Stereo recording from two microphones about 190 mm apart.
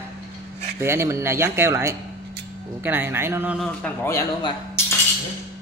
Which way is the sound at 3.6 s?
10° left (ahead or behind).